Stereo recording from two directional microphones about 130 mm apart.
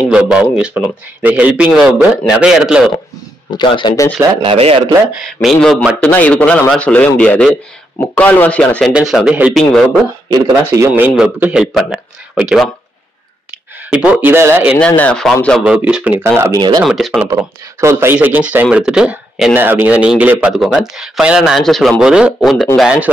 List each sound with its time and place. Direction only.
0.1 s a man's voice: 5° right (ahead or behind)
3.5 s speech: 35° left (ahead or behind)
4.4 s speech: 45° right (ahead or behind)
5.4 s speech: centre (ahead or behind)
8.9 s speech: 5° right (ahead or behind)
10.6 s a man's voice: 20° right (ahead or behind)
11.6 s speech: 5° right (ahead or behind)
13.8 s a man's voice: 10° right (ahead or behind)
14.8 s speech: 10° left (ahead or behind)
15.6 s a man's voice: 10° right (ahead or behind)
16.8 s speech: centre (ahead or behind)
17.3 s a man's voice: 25° right (ahead or behind); by 19.5 s 5° right (ahead or behind)
19.5 s a man's voice: 15° right (ahead or behind)